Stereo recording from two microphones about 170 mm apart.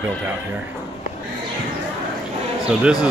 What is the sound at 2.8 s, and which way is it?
Speech, 5° right (ahead or behind).